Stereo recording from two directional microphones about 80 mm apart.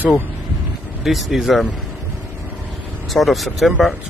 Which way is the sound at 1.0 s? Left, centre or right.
Centre.